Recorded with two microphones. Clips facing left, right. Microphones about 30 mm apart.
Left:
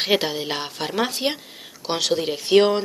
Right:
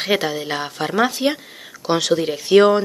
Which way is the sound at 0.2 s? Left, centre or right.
Left.